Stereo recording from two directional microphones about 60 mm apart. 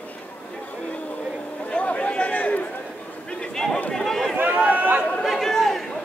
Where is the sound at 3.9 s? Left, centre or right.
Centre.